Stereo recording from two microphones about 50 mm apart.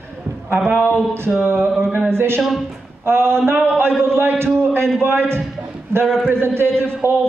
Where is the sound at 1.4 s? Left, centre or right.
Right.